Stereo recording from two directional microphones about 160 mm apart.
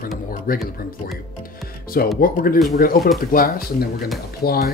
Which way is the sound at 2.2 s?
65° left (ahead or behind).